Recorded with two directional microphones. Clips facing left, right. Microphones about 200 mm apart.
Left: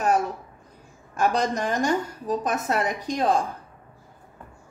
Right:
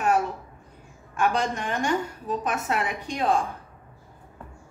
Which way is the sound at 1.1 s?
40° left (ahead or behind).